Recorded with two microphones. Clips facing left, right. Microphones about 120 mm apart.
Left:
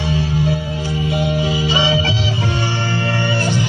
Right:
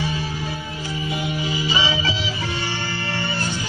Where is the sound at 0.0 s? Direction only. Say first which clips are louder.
Left 7 dB; 75° left (ahead or behind).